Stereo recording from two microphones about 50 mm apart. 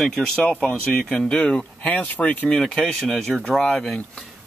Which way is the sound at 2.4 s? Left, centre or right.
Centre.